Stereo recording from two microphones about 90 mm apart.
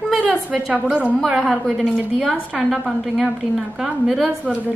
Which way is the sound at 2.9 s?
Centre (ahead or behind).